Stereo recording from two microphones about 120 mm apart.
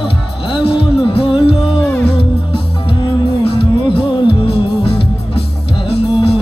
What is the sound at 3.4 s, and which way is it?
Music, 50° left (ahead or behind).